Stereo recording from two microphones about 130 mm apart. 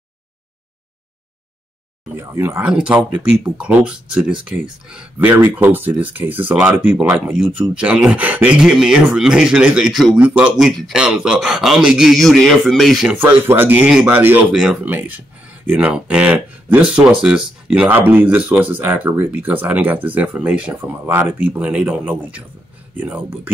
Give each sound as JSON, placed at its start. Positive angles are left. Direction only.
{"t": 2.1, "sound": "speech", "side_deg": -20}
{"t": 2.6, "sound": "speech", "side_deg": -10}
{"t": 13.2, "sound": "speech", "side_deg": -15}